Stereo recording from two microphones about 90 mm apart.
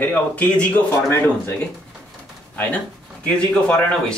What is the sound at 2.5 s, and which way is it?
Speech, 15° left (ahead or behind).